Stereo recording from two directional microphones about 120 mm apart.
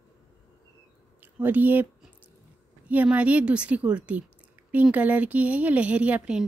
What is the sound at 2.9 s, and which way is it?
A woman's voice, 10° right (ahead or behind).